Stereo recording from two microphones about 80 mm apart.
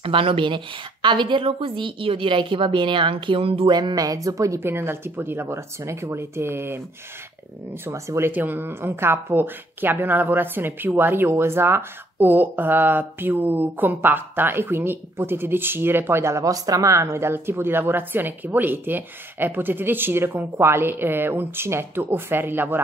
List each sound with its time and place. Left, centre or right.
0.1 s a woman's voice: right
4.6 s speech: right
7.8 s speech: right
8.3 s speech: right